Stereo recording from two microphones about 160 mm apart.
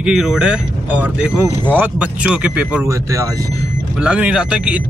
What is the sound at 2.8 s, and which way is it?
Speech, 20° right (ahead or behind).